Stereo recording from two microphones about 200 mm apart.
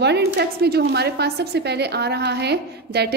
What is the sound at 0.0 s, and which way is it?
A woman's voice, 55° right (ahead or behind).